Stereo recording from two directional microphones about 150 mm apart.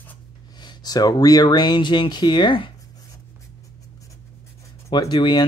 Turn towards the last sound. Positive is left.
turn(degrees=30)  # may be behind; listen again after turning